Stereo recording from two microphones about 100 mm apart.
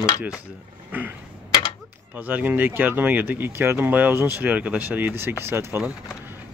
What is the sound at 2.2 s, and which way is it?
Speech, 15° right (ahead or behind).